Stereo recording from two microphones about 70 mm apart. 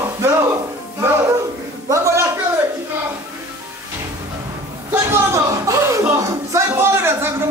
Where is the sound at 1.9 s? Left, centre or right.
Right.